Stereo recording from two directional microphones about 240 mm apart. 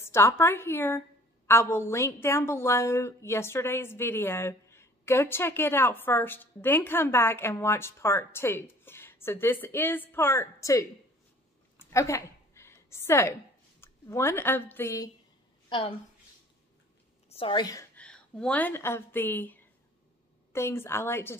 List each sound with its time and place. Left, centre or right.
0.0 s a woman's voice: centre
11.9 s a sound: centre
13.7 s a woman's voice: centre
17.3 s a woman's voice: left